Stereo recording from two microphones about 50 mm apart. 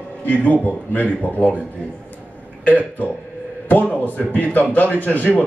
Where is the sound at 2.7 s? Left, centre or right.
Left.